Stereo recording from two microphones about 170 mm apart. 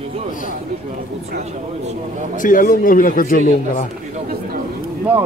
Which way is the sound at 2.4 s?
50° left (ahead or behind).